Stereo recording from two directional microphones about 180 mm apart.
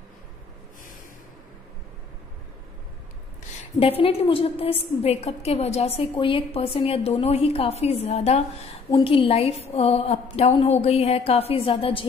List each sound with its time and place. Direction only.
3.8 s a woman's voice: 35° left (ahead or behind)